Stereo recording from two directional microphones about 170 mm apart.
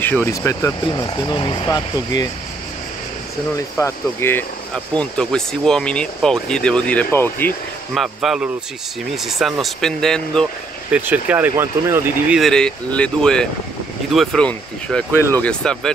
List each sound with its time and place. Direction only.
0.0 s speech: 10° left (ahead or behind)
3.5 s speech: 15° left (ahead or behind)
7.9 s speech: centre (ahead or behind)
10.9 s speech: 10° right (ahead or behind)
12.4 s speech: 5° left (ahead or behind)